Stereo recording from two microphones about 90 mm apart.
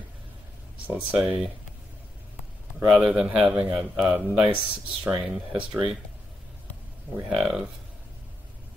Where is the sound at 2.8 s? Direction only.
10° right (ahead or behind).